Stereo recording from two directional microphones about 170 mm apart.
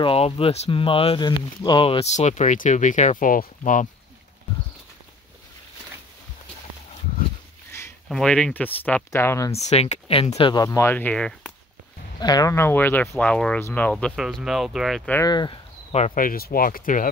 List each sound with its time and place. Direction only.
0.0 s speech: 35° left (ahead or behind); by 3.9 s 50° left (ahead or behind)
7.7 s a sound: 15° left (ahead or behind)
8.1 s speech: 5° left (ahead or behind)
9.5 s speech: 40° left (ahead or behind)
10.6 s speech: 20° left (ahead or behind)
12.2 s speech: 25° left (ahead or behind)
14.1 s speech: 5° right (ahead or behind)
15.2 s speech: 25° left (ahead or behind)
16.2 s speech: 60° left (ahead or behind)